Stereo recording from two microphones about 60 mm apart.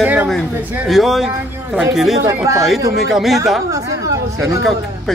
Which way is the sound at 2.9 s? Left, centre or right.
Centre.